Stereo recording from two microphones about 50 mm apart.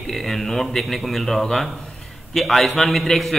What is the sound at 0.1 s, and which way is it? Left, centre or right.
A man's voice, centre.